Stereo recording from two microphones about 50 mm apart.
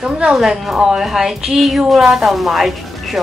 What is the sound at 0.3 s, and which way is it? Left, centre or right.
Speech, centre.